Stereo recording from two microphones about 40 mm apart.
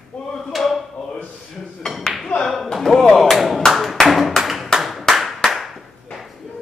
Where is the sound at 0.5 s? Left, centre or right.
Centre.